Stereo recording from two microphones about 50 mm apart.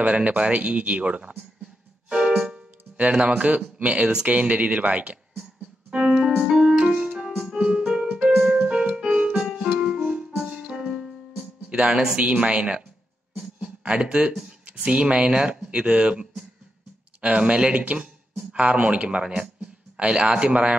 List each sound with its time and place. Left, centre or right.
0.0 s speech: right
2.0 s music: centre
2.4 s keyboard: right
3.7 s speech: right
5.9 s piano: right
6.9 s keyboard: centre
7.6 s music: centre
11.7 s speech: centre
12.2 s speech: right
13.6 s a sound: right
14.9 s speech: centre